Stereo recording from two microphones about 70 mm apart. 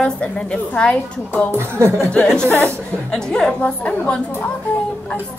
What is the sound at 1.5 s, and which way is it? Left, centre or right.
Speech, right.